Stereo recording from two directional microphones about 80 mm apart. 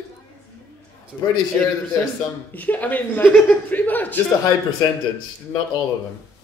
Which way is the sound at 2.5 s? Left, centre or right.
Left.